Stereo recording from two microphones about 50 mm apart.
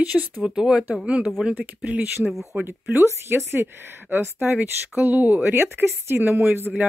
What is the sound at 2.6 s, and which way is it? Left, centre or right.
Speech, right.